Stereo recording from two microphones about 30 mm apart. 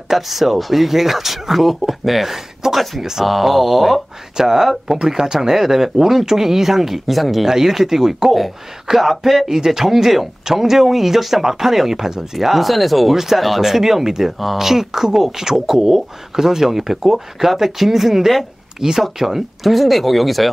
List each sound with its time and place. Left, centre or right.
0.1 s speech: centre
3.3 s speech: centre
4.4 s speech: centre
7.4 s speech: centre
9.5 s speech: centre
13.1 s speech: centre